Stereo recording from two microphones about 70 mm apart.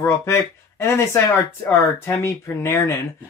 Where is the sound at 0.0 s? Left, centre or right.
Left.